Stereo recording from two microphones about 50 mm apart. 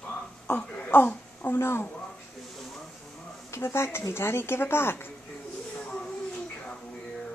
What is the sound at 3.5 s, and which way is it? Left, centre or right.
Speech, left.